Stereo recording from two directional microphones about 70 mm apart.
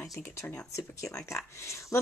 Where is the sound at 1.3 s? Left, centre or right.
Left.